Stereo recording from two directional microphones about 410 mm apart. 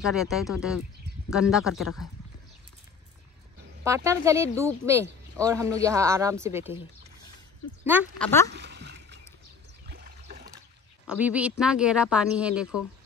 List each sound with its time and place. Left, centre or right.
0.0 s speech: centre
3.8 s speech: centre
8.5 s a sound: right
9.8 s trickle: right
11.1 s speech: centre